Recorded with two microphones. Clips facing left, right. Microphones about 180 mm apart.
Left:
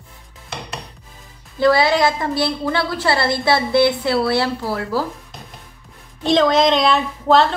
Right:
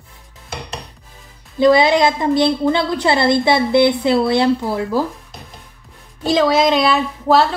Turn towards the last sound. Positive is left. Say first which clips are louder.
# right 1 dB
turn(degrees=-5)  # may be behind; listen again after turning